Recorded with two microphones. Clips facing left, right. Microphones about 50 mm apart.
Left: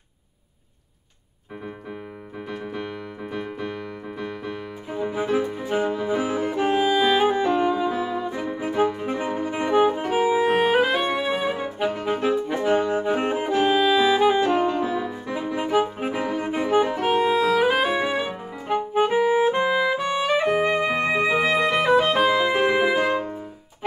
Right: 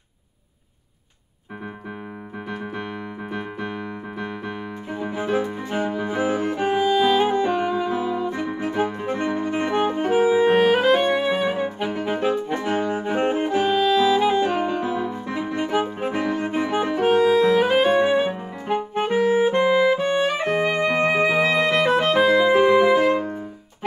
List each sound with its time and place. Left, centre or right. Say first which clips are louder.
2.5 s keyboard: right 1 dB; centre
4.8 s music: left 1 dB; centre
7.4 s music: left 1 dB; centre
9.0 s saxophone: right 2 dB; centre
14.4 s music: left 1 dB; centre
18.9 s music: even; centre